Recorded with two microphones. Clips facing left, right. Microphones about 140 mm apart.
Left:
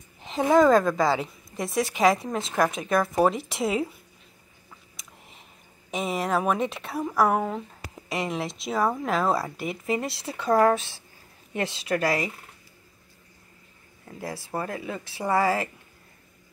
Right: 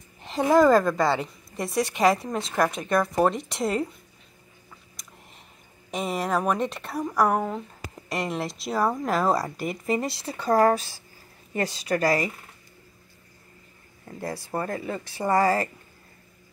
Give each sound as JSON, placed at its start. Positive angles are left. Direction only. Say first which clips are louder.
{"t": 0.2, "sound": "speech", "louder": "even", "side_deg": 0}
{"t": 5.0, "sound": "a sound", "louder": "even", "side_deg": 0}
{"t": 5.9, "sound": "speech", "louder": "even", "side_deg": 0}
{"t": 14.0, "sound": "speech", "louder": "right 2 dB", "side_deg": 0}